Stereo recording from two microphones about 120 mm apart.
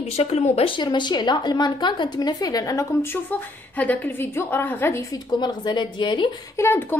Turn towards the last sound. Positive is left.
turn(degrees=20)  # may be behind; listen again after turning